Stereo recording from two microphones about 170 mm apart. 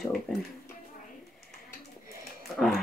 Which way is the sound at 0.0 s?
Centre (ahead or behind).